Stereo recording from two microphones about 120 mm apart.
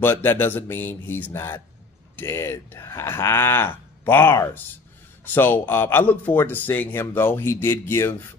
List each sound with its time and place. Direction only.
0.0 s a man's voice: 20° left (ahead or behind)